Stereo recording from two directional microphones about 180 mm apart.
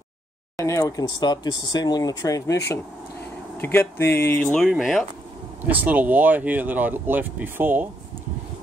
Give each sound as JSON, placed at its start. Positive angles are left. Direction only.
{"t": 0.6, "sound": "speech", "side_deg": 20}